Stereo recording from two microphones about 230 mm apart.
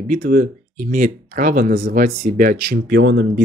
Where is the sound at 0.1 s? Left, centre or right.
Right.